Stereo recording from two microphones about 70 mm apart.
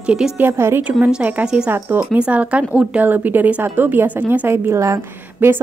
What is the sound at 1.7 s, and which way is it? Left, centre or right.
Speech, right.